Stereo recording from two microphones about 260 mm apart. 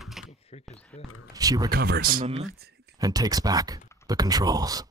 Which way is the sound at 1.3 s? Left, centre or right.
Centre.